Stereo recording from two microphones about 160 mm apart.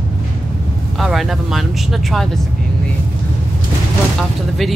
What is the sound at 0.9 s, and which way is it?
Speech, centre (ahead or behind).